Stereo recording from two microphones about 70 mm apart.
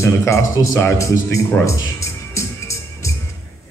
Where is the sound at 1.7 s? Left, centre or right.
Left.